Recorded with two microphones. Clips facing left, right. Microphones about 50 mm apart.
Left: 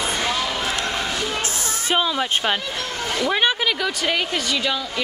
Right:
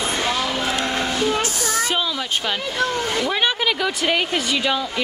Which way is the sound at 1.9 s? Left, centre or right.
Left.